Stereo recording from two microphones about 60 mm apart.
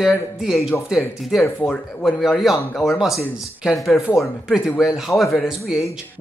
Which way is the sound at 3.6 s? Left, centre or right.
Centre.